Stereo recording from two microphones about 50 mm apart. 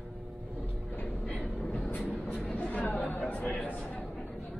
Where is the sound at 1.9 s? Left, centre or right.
Left.